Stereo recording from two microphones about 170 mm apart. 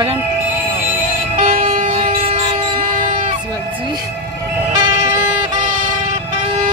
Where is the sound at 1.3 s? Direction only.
50° right (ahead or behind).